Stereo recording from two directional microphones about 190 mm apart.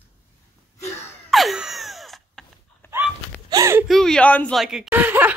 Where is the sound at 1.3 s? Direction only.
Centre (ahead or behind).